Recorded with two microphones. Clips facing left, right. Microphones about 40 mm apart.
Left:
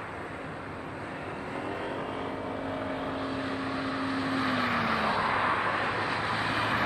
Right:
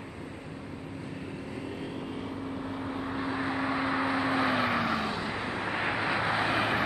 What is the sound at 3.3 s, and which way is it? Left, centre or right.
Vehicle, centre.